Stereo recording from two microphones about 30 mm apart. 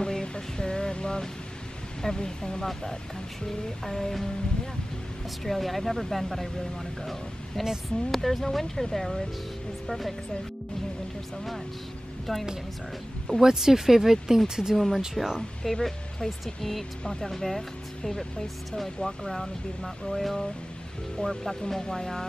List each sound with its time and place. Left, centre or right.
0.0 s a sound: left
2.0 s speech: left
5.4 s speech: centre
7.6 s speech: centre
12.3 s speech: centre
13.4 s speech: centre
15.2 s speech: centre
15.6 s speech: centre
17.3 s speech: centre